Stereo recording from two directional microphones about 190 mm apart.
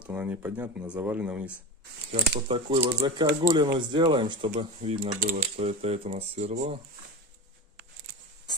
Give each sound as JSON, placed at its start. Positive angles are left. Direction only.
{"t": 0.0, "sound": "speech", "side_deg": -10}
{"t": 2.4, "sound": "speech", "side_deg": -30}